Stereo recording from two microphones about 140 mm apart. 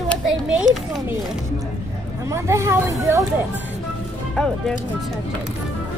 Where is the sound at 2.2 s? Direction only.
20° right (ahead or behind).